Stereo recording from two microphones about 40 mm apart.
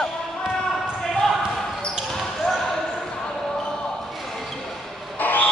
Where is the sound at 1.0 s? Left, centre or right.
Centre.